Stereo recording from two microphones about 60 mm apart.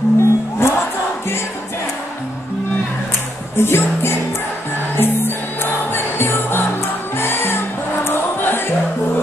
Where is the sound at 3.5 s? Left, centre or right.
Left.